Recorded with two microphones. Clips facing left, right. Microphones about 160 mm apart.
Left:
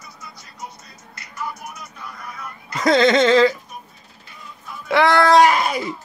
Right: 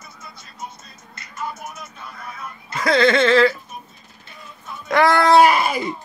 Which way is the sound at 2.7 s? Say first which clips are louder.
Left 2 dB; 20° left (ahead or behind).